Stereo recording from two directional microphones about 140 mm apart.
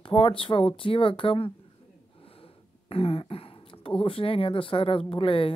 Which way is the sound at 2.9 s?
45° left (ahead or behind).